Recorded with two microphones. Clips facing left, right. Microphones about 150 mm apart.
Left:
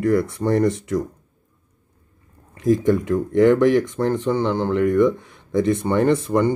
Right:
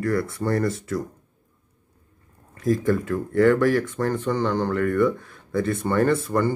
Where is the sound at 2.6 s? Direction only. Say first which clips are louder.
Left 4 dB; 20° left (ahead or behind).